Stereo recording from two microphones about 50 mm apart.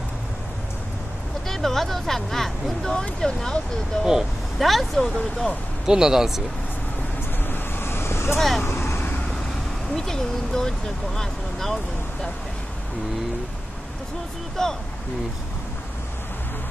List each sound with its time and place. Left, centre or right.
1.5 s speech: centre
4.0 s speech: centre
4.6 s speech: centre
5.9 s speech: centre
7.4 s vehicle: left
9.9 s speech: centre
14.6 s speech: centre